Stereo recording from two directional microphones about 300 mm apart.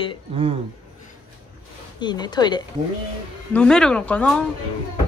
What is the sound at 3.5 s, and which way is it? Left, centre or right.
Speech, centre.